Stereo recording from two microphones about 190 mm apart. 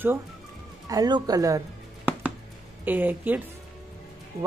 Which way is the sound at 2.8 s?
10° right (ahead or behind).